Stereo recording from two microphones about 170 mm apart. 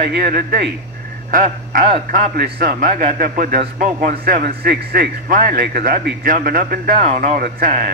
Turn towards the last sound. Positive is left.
turn(degrees=-60)  # may be behind; listen again after turning